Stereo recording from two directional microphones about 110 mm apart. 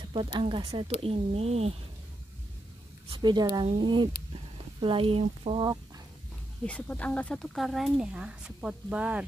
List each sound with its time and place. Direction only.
0.0 s speech: 45° right (ahead or behind)
1.0 s speech: 65° right (ahead or behind)
3.2 s speech: 40° right (ahead or behind); by 5.6 s 60° right (ahead or behind)
6.6 s speech: 10° left (ahead or behind); by 9.2 s 10° right (ahead or behind)